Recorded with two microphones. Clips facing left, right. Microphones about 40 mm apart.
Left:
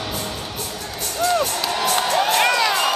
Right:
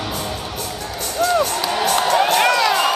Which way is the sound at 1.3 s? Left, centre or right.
Centre.